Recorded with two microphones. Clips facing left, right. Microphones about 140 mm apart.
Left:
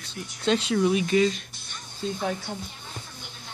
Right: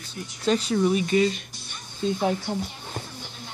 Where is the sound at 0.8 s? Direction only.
Centre (ahead or behind).